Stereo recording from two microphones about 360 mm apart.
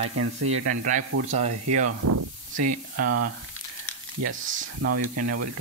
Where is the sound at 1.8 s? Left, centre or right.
Right.